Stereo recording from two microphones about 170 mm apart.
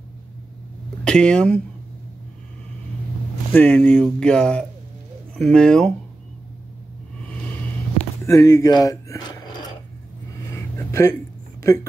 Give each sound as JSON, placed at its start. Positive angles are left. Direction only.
{"t": 1.0, "sound": "speech", "side_deg": 5}
{"t": 3.5, "sound": "speech", "side_deg": 10}
{"t": 8.3, "sound": "speech", "side_deg": 20}
{"t": 10.5, "sound": "a sound", "side_deg": 15}
{"t": 11.6, "sound": "speech", "side_deg": 20}